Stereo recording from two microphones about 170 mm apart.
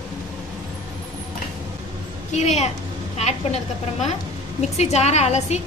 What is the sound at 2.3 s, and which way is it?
A woman's voice, 40° left (ahead or behind).